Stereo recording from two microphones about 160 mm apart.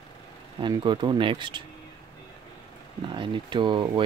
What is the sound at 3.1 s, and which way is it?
Speech, 30° right (ahead or behind).